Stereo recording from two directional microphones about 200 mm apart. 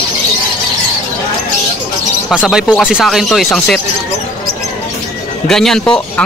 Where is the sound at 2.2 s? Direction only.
Centre (ahead or behind).